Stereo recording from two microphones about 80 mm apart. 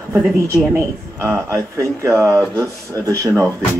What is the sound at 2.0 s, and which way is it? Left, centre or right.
Speech, right.